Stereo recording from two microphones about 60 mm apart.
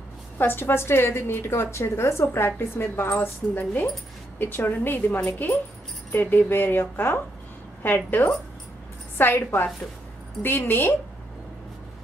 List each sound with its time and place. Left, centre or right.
0.4 s a woman's voice: left